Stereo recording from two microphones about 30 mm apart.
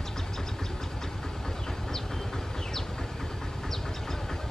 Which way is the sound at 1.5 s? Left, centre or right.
Centre.